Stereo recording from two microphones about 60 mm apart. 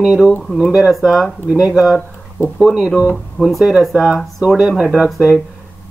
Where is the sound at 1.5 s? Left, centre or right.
Centre.